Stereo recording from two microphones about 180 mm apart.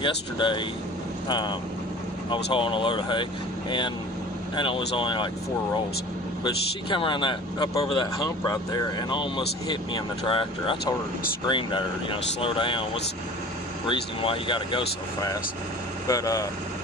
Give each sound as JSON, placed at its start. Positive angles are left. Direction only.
{"t": 0.0, "sound": "a man's voice", "side_deg": 25}
{"t": 2.5, "sound": "a man's voice", "side_deg": 30}
{"t": 4.6, "sound": "a man's voice", "side_deg": 30}
{"t": 6.4, "sound": "a man's voice", "side_deg": 25}